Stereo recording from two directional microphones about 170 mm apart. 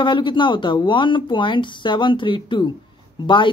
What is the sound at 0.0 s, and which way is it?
Speech, 30° left (ahead or behind).